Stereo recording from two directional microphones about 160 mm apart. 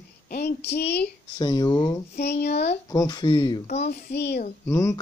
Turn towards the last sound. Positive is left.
turn(degrees=20)  # may be behind; listen again after turning